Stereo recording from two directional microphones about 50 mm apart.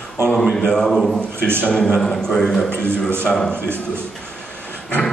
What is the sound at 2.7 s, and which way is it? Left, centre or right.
Speech, right.